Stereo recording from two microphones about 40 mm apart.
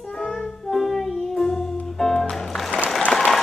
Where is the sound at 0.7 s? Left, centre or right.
Centre.